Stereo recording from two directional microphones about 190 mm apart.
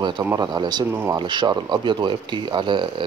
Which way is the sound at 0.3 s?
20° right (ahead or behind).